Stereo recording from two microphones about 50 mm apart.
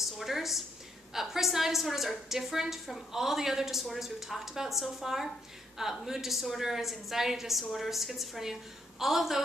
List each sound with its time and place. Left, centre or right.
0.0 s a woman's voice: centre